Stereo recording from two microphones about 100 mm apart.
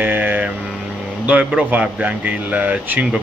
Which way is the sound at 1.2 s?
15° right (ahead or behind).